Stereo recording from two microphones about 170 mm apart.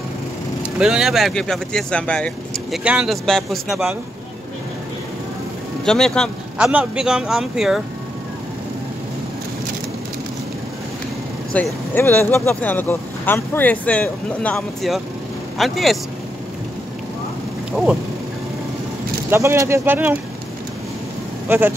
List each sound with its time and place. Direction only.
0.6 s speech: 5° right (ahead or behind)
2.8 s speech: 5° right (ahead or behind)
5.9 s speech: 5° left (ahead or behind)
11.5 s speech: 10° left (ahead or behind)
17.7 s speech: centre (ahead or behind)
19.3 s speech: 15° right (ahead or behind)
21.5 s speech: 10° right (ahead or behind)